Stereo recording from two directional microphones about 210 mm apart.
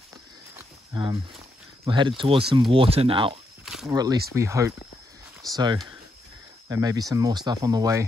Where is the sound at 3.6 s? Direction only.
Centre (ahead or behind).